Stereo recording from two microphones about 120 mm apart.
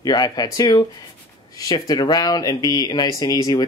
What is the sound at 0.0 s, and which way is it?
Speech, 35° left (ahead or behind).